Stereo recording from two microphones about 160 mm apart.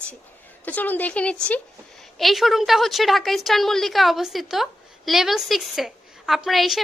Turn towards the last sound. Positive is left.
turn(degrees=0)  # may be behind; listen again after turning